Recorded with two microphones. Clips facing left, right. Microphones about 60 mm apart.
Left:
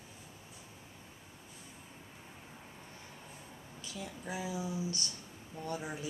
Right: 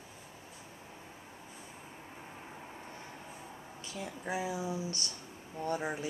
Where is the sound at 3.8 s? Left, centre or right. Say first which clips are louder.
Right 3 dB; right.